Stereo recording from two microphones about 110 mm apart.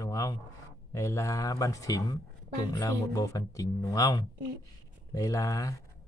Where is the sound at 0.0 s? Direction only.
30° left (ahead or behind).